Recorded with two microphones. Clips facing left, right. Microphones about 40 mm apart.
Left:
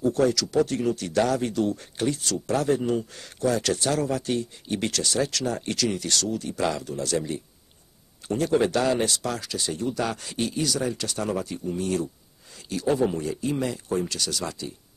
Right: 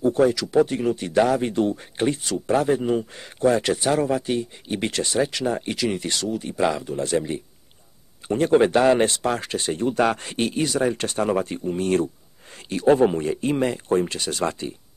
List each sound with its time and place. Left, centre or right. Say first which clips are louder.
0.0 s speech: right 3 dB; right